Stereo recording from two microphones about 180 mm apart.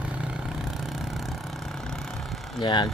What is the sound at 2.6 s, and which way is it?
Speech, 25° left (ahead or behind).